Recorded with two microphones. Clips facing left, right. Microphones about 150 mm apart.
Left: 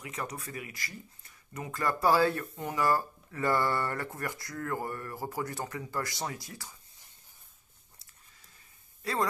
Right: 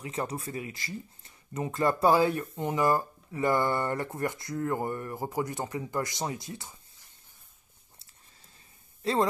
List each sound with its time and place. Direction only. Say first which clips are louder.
0.0 s speech: right 5 dB; 30° right (ahead or behind)
9.0 s speech: right 5 dB; 25° right (ahead or behind)